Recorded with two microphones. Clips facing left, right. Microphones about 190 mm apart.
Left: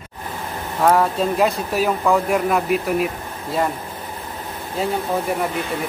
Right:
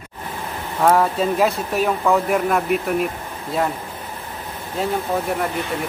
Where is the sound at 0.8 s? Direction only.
Centre (ahead or behind).